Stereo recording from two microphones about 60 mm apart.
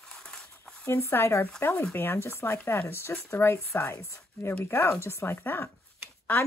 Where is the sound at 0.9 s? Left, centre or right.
Left.